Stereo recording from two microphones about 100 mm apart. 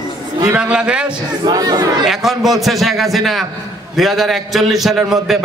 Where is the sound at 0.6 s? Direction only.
10° right (ahead or behind).